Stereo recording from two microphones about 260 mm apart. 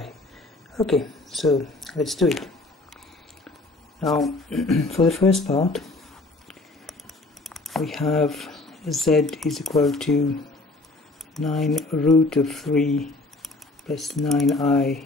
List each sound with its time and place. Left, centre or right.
0.8 s speech: centre
4.0 s speech: centre
5.4 s speech: left
7.4 s speech: centre
11.3 s speech: centre